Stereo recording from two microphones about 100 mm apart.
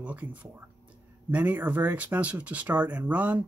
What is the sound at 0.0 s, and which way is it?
Speech, 15° right (ahead or behind).